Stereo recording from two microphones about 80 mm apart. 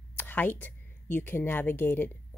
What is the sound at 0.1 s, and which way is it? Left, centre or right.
A woman's voice, left.